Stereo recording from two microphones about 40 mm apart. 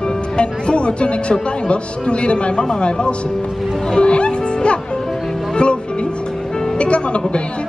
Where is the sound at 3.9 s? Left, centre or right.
Left.